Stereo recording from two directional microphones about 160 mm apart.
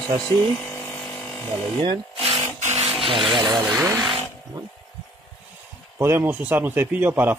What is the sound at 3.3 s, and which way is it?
Speech, 30° right (ahead or behind).